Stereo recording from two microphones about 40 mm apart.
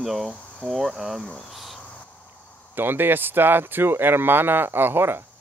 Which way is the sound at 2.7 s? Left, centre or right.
Right.